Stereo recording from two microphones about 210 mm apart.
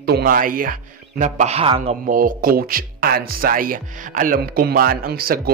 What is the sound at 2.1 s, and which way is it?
Speech, 40° right (ahead or behind).